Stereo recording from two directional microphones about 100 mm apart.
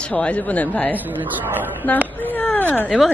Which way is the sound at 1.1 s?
20° right (ahead or behind).